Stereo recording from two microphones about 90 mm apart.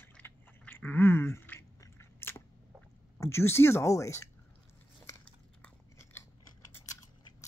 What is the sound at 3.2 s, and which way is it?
Speech, 30° left (ahead or behind).